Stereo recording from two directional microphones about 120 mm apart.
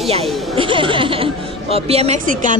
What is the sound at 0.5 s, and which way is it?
Speech, 45° right (ahead or behind).